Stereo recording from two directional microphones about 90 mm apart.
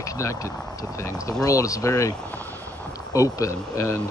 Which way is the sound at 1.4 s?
40° left (ahead or behind).